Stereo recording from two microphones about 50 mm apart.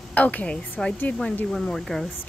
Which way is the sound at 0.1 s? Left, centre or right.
Left.